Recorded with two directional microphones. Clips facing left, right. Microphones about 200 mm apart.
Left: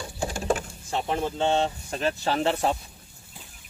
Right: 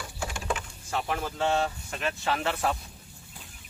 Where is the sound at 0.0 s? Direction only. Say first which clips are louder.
Left 5 dB; 35° left (ahead or behind).